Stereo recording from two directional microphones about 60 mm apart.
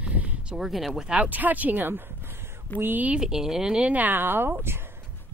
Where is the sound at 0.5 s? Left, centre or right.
Centre.